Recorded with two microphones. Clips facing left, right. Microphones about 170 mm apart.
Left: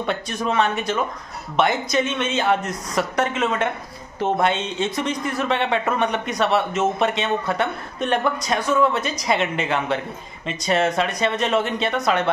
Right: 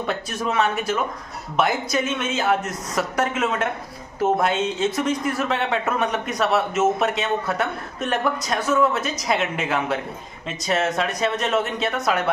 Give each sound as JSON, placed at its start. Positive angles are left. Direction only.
{"t": 0.0, "sound": "speech", "side_deg": -5}